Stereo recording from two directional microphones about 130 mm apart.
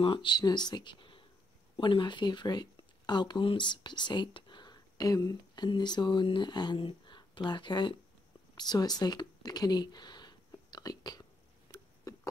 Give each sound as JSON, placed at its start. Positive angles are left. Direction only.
{"t": 0.0, "sound": "speech", "side_deg": 40}